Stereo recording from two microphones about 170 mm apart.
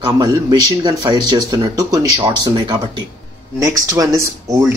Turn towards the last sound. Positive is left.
turn(degrees=-20)  # may be behind; listen again after turning